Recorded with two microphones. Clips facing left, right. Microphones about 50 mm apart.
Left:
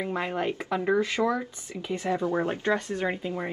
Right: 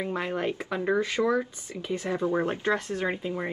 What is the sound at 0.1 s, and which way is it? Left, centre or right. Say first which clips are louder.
Speech: even; centre.